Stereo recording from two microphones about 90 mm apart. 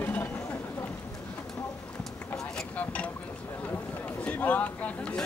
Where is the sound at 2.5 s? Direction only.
15° left (ahead or behind).